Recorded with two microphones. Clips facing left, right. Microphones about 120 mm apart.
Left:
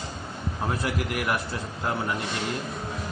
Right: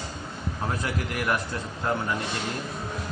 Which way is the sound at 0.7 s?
5° left (ahead or behind).